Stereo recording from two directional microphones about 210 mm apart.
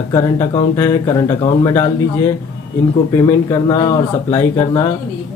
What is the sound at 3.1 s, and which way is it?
Speech, 15° left (ahead or behind).